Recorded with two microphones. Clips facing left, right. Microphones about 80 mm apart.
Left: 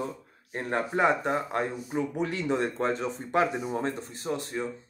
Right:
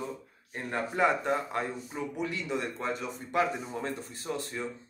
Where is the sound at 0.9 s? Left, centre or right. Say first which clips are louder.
Left 1 dB; centre.